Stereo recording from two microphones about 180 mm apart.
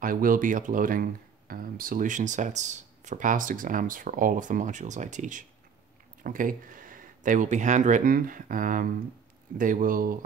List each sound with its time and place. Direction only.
0.0 s speech: 50° right (ahead or behind)